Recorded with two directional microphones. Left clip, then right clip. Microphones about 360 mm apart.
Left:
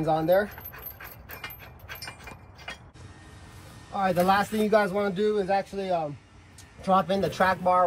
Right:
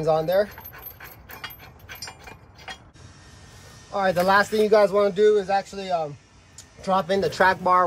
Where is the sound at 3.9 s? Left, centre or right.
Right.